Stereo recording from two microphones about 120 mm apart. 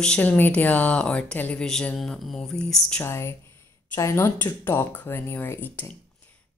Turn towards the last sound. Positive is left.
turn(degrees=15)  # may be behind; listen again after turning